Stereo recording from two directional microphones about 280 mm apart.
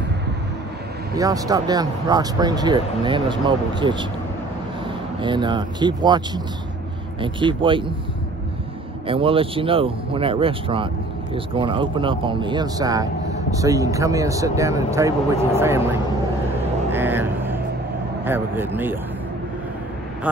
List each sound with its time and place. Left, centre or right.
1.1 s speech: centre
5.2 s speech: centre
9.0 s speech: centre
16.9 s vehicle: centre
18.2 s speech: centre